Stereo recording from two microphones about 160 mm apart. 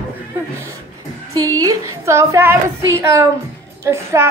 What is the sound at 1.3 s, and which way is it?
A woman's voice, 20° right (ahead or behind).